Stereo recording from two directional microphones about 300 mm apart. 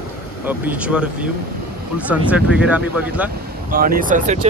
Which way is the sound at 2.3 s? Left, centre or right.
Centre.